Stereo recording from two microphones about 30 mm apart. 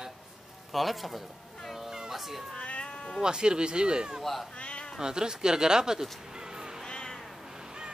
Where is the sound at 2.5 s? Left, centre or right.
Left.